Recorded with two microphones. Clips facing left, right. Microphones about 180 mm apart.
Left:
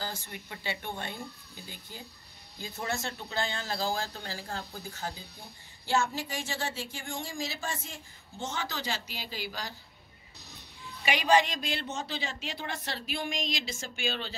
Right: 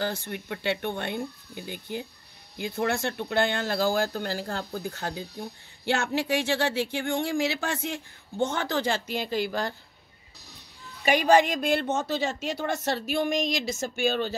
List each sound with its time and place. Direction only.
0.0 s speech: 65° right (ahead or behind)
11.1 s speech: 50° right (ahead or behind)